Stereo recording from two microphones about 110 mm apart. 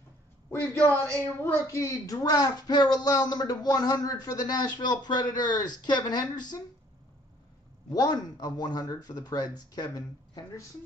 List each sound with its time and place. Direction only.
0.5 s a woman's voice: 15° left (ahead or behind)
1.2 s a woman's voice: 25° left (ahead or behind)
7.9 s a woman's voice: 35° left (ahead or behind)